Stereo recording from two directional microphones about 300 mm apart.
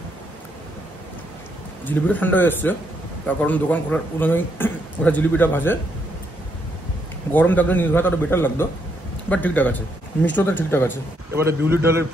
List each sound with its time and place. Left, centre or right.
1.9 s a man's voice: centre
7.3 s a man's voice: centre
11.3 s speech: centre